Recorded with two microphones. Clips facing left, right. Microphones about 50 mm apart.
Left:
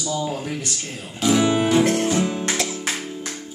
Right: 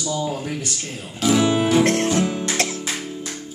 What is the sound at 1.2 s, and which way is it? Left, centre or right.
Music, centre.